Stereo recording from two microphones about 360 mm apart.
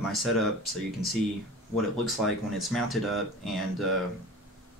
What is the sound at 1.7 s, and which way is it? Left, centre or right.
Speech, centre.